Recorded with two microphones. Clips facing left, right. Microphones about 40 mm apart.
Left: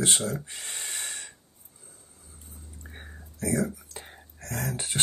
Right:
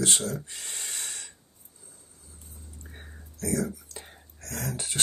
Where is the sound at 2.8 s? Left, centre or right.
Left.